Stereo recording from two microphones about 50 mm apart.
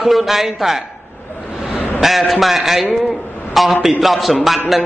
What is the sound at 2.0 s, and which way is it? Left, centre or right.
A man's voice, centre.